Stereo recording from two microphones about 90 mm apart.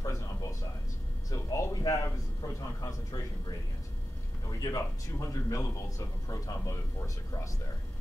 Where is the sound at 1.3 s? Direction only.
40° left (ahead or behind).